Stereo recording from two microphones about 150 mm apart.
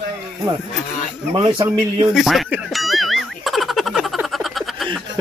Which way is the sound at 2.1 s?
Centre (ahead or behind).